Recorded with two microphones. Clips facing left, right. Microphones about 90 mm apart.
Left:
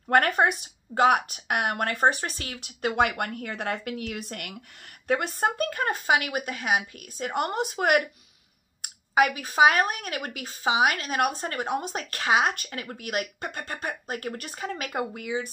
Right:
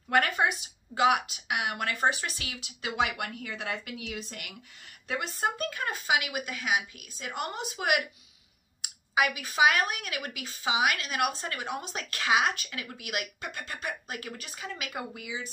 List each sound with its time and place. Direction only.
0.1 s speech: 50° left (ahead or behind)